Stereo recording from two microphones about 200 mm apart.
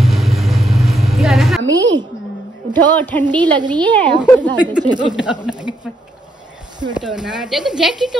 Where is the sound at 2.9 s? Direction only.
10° left (ahead or behind).